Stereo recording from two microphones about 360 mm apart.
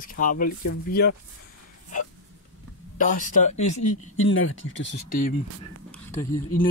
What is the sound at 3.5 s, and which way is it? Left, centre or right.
Speech, left.